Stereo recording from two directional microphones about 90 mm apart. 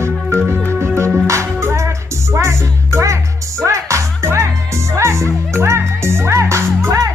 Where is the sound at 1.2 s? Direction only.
35° right (ahead or behind).